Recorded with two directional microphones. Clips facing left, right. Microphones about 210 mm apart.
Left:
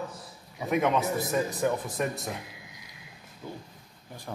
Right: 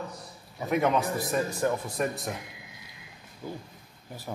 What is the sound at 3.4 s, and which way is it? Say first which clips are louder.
Speech: right 3 dB; 5° right (ahead or behind).